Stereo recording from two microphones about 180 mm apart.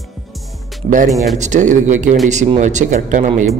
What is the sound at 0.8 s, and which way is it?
Speech, 45° right (ahead or behind).